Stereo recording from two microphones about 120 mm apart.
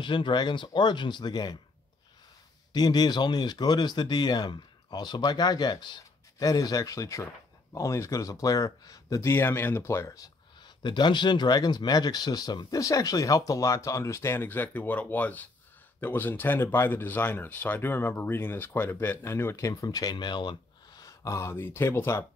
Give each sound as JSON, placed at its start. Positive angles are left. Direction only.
{"t": 0.0, "sound": "speech", "side_deg": 40}
{"t": 2.7, "sound": "speech", "side_deg": 35}
{"t": 10.8, "sound": "speech", "side_deg": 40}